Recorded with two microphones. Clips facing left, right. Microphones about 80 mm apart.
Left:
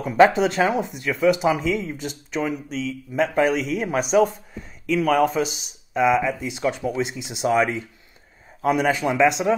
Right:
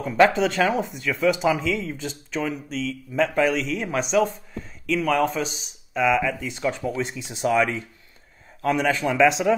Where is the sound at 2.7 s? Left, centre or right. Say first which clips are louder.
Left 1 dB; left.